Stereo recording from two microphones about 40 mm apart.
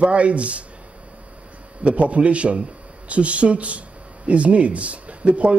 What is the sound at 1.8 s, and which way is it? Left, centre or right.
Speech, right.